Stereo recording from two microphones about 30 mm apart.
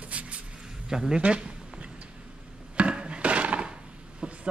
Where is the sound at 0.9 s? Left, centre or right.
Right.